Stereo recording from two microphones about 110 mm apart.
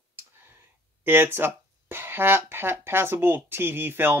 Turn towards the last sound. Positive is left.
turn(degrees=-20)  # may be behind; listen again after turning